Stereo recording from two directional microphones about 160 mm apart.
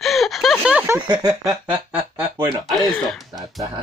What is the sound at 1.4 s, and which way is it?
Speech, centre (ahead or behind).